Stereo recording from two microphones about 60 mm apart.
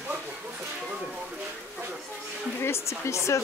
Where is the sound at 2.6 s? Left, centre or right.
Left.